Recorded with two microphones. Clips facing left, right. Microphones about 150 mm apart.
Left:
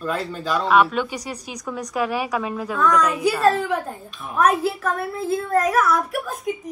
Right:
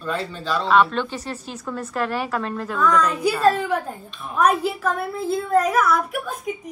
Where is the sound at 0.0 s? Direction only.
5° left (ahead or behind).